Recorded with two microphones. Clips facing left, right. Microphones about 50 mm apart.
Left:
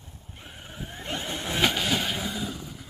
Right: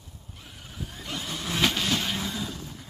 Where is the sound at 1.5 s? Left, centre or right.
Centre.